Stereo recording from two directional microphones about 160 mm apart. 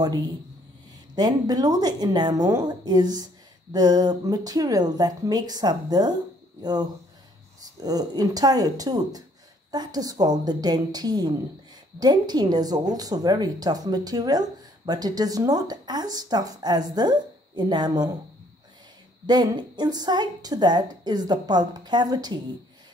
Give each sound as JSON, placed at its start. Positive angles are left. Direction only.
{"t": 1.1, "sound": "a woman's voice", "side_deg": -25}
{"t": 19.2, "sound": "a woman's voice", "side_deg": -25}